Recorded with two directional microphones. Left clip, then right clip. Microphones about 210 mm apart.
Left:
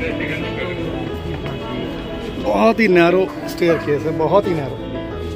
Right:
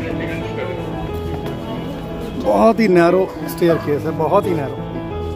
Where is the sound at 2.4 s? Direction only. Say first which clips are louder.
Right 1 dB; 10° right (ahead or behind).